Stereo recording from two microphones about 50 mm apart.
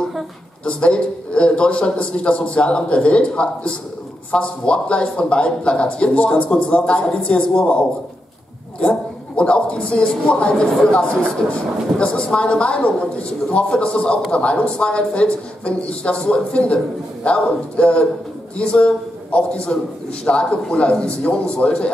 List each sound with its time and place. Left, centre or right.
0.7 s speech: left
9.4 s a man's voice: left